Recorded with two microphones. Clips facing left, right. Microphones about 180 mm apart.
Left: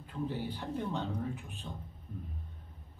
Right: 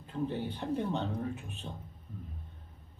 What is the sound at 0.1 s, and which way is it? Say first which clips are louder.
Speech: right 2 dB; 15° right (ahead or behind).